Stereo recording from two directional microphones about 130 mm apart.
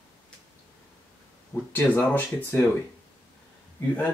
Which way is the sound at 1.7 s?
15° left (ahead or behind).